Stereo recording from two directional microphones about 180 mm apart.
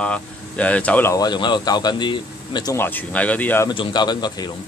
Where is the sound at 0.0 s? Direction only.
5° left (ahead or behind).